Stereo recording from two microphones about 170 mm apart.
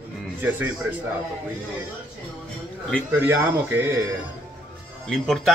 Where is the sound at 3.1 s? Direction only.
10° right (ahead or behind).